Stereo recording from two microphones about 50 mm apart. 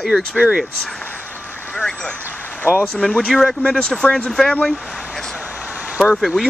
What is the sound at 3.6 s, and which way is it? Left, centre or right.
Speech, centre.